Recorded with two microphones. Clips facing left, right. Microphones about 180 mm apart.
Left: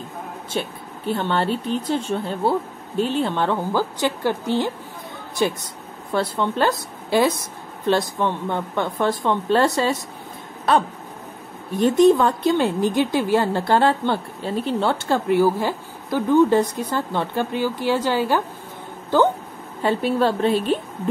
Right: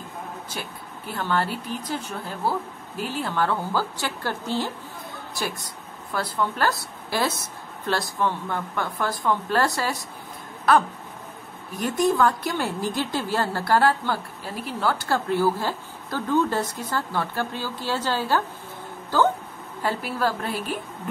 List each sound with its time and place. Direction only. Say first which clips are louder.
0.5 s a woman's voice: left 8 dB; 25° left (ahead or behind)
6.1 s a woman's voice: left 5 dB; 25° left (ahead or behind)
11.7 s a woman's voice: left 8 dB; 25° left (ahead or behind)
19.8 s a woman's voice: left 6 dB; 25° left (ahead or behind)